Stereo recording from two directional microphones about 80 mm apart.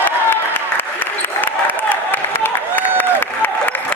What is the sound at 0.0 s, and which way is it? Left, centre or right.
Applause, left.